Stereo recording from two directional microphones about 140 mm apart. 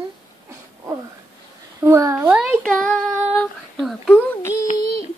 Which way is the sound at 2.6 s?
5° left (ahead or behind).